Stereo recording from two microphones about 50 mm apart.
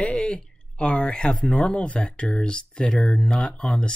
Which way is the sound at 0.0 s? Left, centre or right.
Centre.